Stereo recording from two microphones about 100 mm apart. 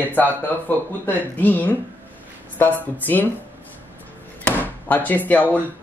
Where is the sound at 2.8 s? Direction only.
20° left (ahead or behind).